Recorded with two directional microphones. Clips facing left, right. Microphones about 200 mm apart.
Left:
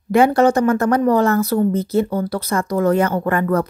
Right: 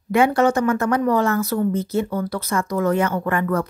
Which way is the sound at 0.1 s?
35° left (ahead or behind).